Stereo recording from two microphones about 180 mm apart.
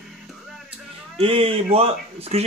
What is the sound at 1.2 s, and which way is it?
Speech, 30° right (ahead or behind).